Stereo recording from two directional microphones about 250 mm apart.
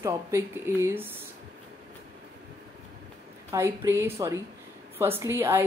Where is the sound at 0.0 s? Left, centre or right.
Centre.